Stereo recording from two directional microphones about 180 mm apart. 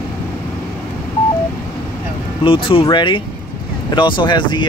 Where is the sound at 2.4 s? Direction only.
30° left (ahead or behind).